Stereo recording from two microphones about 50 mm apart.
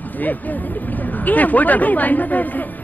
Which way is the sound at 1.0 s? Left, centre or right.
Left.